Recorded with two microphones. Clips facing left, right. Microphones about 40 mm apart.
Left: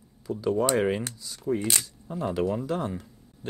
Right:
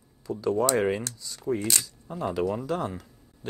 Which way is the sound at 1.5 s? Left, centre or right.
Left.